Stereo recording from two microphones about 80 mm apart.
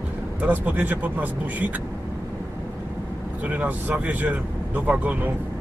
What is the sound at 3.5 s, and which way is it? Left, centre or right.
Speech, right.